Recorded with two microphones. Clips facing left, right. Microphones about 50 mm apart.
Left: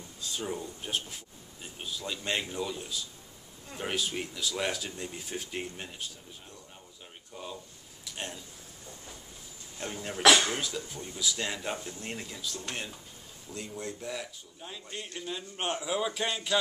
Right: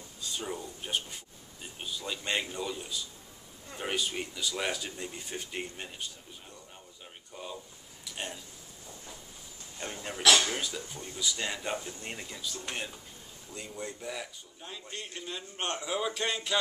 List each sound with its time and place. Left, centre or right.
0.2 s speech: centre
7.3 s a sound: centre
9.8 s speech: centre